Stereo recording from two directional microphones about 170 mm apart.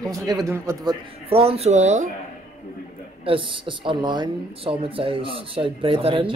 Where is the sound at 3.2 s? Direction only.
30° right (ahead or behind).